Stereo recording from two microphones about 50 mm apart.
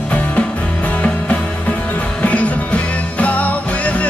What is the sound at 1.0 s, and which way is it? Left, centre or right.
Music, left.